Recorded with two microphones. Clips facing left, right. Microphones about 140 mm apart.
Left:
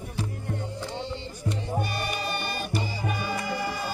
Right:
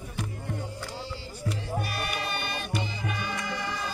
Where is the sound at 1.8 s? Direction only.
Centre (ahead or behind).